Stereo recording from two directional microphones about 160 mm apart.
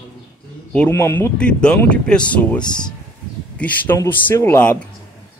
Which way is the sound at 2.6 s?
25° left (ahead or behind).